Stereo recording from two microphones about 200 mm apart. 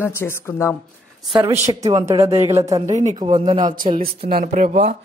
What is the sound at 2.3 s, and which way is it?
Speech, 30° right (ahead or behind).